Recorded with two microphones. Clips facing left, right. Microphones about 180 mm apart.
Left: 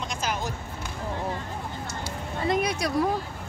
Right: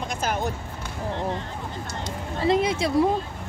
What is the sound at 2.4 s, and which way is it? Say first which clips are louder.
Speech: right 4 dB; 25° right (ahead or behind).